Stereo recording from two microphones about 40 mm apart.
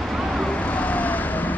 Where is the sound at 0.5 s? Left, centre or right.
Left.